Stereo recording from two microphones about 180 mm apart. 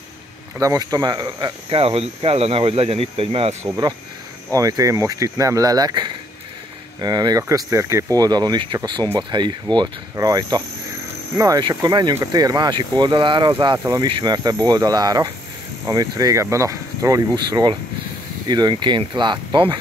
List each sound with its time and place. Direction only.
0.6 s speech: 20° right (ahead or behind); by 3.5 s 35° right (ahead or behind)
3.6 s speech: 20° right (ahead or behind)